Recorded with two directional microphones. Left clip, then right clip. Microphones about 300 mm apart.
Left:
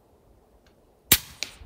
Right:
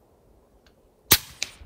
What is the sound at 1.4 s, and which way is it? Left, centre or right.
Music, right.